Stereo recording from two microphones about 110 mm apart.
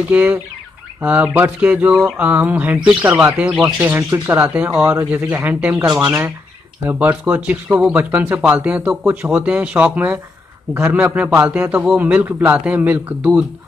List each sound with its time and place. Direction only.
0.1 s speech: 15° right (ahead or behind)
6.9 s speech: 15° right (ahead or behind)